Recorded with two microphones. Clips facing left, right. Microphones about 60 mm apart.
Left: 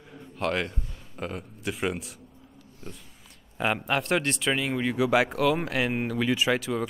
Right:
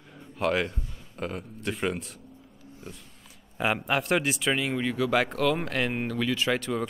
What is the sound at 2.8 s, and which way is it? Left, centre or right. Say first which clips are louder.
Speech: left 1 dB; centre.